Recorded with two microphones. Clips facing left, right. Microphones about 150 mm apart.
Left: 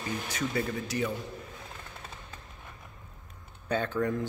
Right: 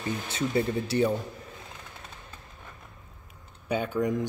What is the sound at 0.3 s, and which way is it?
Speech, 25° right (ahead or behind).